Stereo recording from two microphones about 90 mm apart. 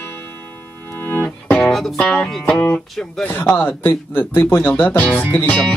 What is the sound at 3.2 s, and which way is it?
Speech, 25° left (ahead or behind).